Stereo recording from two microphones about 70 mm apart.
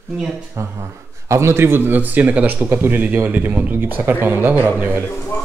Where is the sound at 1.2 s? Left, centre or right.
Right.